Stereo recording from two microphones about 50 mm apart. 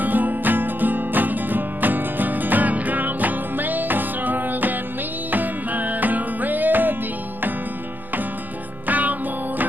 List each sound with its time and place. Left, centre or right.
0.0 s music: right
8.8 s music: right